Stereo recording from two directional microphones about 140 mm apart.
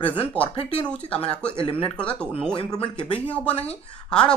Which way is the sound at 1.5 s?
40° left (ahead or behind).